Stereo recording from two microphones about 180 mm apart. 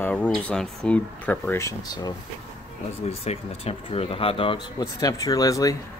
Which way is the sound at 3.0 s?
35° left (ahead or behind).